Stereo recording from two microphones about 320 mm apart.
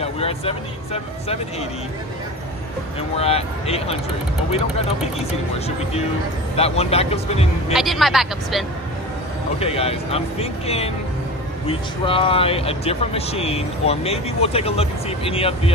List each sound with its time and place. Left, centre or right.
0.0 s speech: centre
3.2 s speech: centre
6.5 s speech: centre
7.7 s speech: centre
9.6 s speech: centre